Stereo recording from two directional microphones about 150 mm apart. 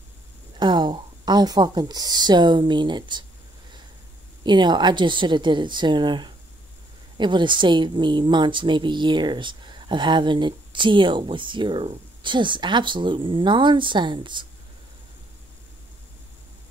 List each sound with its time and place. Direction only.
0.6 s speech: 30° right (ahead or behind)
4.4 s a woman's voice: 30° right (ahead or behind)